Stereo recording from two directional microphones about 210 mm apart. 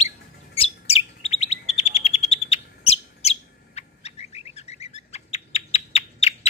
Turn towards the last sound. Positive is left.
turn(degrees=30)  # may be behind; listen again after turning